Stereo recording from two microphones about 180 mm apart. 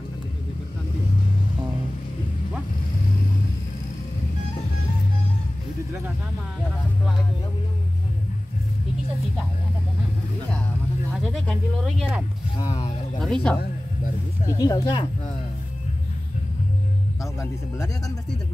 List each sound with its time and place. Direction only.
11.1 s a sound: centre (ahead or behind)
13.2 s speech: 5° left (ahead or behind)
14.5 s speech: 20° left (ahead or behind)
17.2 s speech: 15° left (ahead or behind)